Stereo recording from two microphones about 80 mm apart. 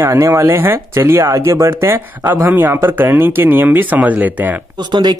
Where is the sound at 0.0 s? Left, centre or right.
Right.